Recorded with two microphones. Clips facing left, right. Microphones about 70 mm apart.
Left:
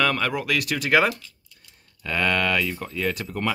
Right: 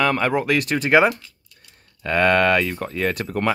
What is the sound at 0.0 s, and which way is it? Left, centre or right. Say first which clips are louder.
Speech: right 3 dB; right.